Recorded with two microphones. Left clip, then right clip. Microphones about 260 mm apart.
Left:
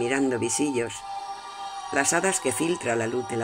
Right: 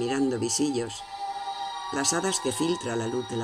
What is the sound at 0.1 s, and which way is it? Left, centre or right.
Speech, left.